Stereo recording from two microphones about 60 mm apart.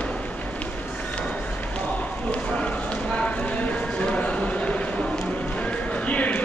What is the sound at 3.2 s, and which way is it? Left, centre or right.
Clip-clop, left.